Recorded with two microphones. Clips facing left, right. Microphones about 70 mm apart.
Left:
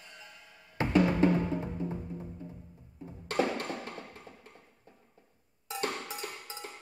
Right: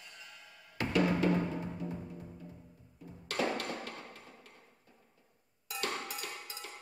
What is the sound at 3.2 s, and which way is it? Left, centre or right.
Music, left.